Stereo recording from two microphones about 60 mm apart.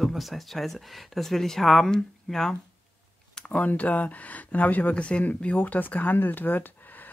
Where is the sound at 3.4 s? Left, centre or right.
Left.